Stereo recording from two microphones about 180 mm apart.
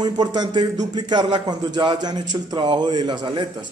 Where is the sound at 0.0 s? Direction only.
25° right (ahead or behind).